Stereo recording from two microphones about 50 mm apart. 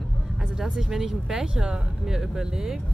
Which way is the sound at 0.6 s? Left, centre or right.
Centre.